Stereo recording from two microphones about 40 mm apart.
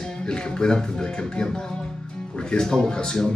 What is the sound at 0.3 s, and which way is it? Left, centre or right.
Speech, centre.